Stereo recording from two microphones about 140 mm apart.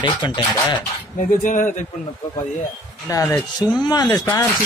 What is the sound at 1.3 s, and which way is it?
Speech, 70° left (ahead or behind).